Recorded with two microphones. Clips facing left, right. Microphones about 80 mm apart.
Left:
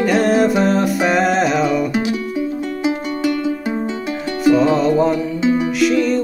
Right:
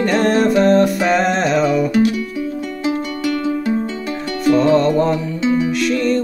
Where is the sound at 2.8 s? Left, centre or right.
Centre.